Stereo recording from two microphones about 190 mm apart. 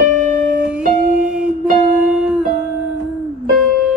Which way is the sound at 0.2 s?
45° right (ahead or behind).